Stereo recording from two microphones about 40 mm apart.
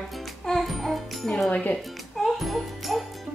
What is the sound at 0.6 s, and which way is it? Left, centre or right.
Music, centre.